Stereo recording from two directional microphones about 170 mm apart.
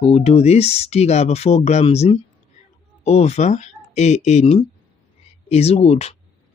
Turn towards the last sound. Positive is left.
turn(degrees=40)  # may be behind; listen again after turning